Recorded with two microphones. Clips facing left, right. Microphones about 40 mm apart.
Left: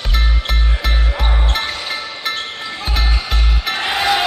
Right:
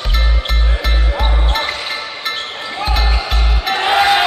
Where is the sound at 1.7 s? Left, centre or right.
Centre.